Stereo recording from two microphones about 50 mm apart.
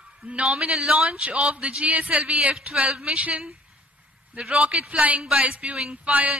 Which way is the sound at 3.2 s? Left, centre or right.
Right.